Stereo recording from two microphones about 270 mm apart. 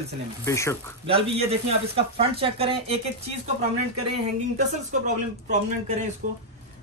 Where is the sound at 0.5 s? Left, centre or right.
Centre.